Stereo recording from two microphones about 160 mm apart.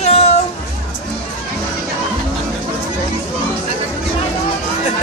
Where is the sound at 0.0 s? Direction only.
45° left (ahead or behind).